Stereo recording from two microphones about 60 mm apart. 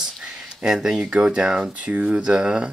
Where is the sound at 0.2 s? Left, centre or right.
Centre.